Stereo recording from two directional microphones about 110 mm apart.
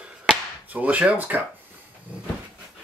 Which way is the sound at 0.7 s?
15° right (ahead or behind).